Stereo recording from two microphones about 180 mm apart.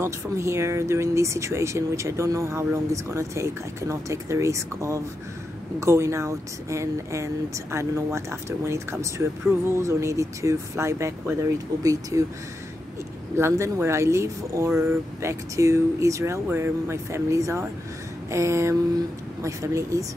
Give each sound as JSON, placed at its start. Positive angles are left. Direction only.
{"t": 0.0, "sound": "speech", "side_deg": -15}
{"t": 13.4, "sound": "speech", "side_deg": -15}